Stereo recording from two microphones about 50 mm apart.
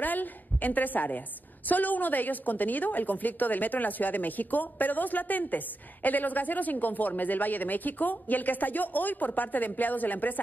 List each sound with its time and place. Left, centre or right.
0.0 s a woman's voice: left